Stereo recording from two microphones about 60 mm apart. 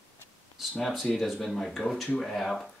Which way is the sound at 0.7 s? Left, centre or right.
Centre.